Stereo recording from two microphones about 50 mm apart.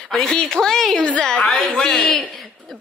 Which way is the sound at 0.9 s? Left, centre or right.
Left.